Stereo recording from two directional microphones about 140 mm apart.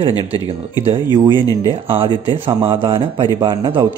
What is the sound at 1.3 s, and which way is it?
Speech, 25° left (ahead or behind).